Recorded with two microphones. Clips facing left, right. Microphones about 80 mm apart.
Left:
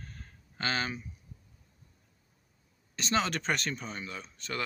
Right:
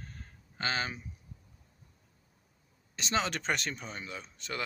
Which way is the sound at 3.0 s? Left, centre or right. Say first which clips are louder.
Left 2 dB; centre.